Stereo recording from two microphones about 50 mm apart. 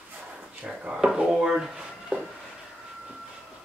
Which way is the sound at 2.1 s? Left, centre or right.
Right.